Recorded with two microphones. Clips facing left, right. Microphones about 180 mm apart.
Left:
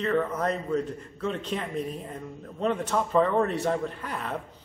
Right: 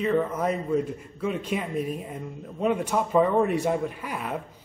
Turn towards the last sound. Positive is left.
turn(degrees=-10)  # may be behind; listen again after turning